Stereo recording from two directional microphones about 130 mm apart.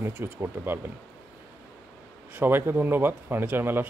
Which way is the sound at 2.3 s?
15° right (ahead or behind).